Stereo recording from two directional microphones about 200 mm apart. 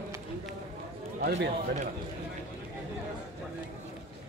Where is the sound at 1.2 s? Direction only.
50° right (ahead or behind).